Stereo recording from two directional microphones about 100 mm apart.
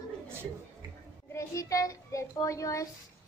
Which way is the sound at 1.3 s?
30° left (ahead or behind).